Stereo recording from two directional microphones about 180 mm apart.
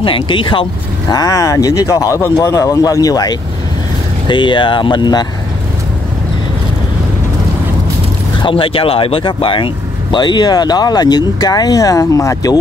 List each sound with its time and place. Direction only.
0.0 s speech: 30° left (ahead or behind)
8.4 s speech: 30° left (ahead or behind)